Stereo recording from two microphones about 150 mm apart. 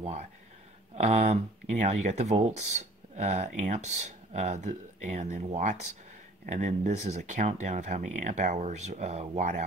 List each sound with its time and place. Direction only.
0.0 s speech: 45° right (ahead or behind)